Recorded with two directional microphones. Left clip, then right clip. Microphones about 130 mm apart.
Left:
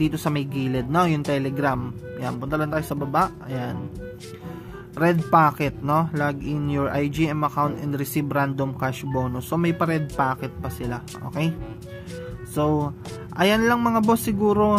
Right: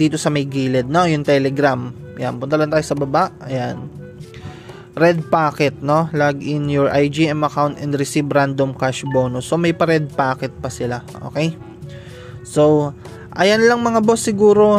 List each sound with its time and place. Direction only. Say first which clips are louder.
0.0 s speech: right 7 dB; 35° right (ahead or behind)
4.9 s speech: right 4 dB; 40° right (ahead or behind)
12.5 s speech: right 10 dB; 35° right (ahead or behind)